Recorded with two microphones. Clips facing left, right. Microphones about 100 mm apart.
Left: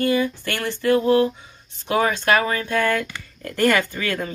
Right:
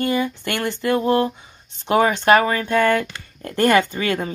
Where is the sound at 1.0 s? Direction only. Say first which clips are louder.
Left 1 dB; 35° right (ahead or behind).